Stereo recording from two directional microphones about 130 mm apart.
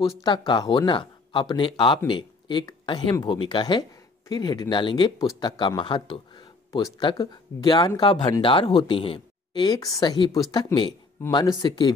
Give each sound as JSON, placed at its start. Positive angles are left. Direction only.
{"t": 0.2, "sound": "speech", "side_deg": 35}